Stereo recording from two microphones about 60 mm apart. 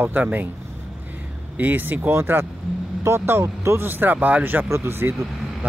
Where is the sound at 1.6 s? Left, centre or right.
Right.